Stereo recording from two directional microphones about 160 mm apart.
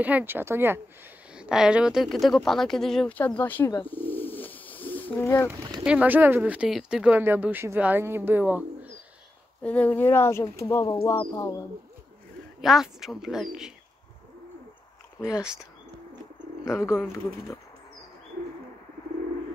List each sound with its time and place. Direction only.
0.0 s speech: 10° right (ahead or behind); by 5.5 s 15° left (ahead or behind)
5.5 s speech: 20° right (ahead or behind)
5.9 s speech: 10° right (ahead or behind)
9.6 s speech: 10° left (ahead or behind)
12.6 s speech: centre (ahead or behind)
15.3 s speech: 5° right (ahead or behind)
16.6 s speech: 20° left (ahead or behind)